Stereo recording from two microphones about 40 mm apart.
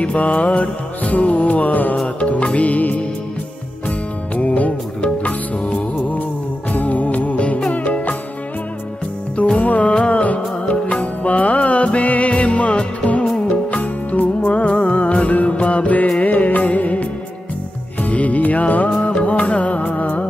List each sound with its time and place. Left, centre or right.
0.0 s music: left
2.1 s music: left
4.4 s music: left
9.6 s music: left
13.5 s music: left
18.0 s music: left
19.0 s music: left